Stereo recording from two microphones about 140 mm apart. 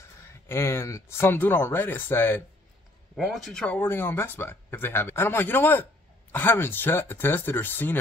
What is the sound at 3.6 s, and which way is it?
Speech, 10° left (ahead or behind).